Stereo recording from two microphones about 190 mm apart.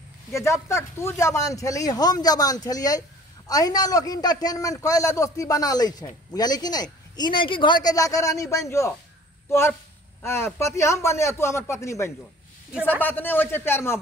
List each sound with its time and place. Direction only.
0.3 s a man's voice: 15° left (ahead or behind)